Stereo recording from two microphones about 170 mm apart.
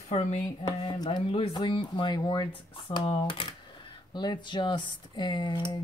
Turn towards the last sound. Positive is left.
turn(degrees=25)  # may be behind; listen again after turning